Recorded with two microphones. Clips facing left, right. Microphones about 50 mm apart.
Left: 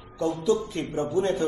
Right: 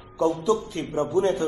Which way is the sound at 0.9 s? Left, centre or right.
Right.